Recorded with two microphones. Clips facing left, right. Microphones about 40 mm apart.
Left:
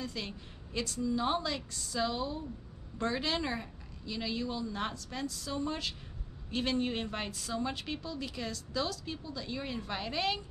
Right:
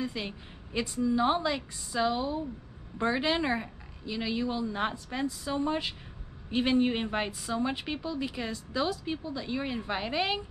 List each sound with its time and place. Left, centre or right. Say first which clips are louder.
0.0 s speech: right 5 dB; centre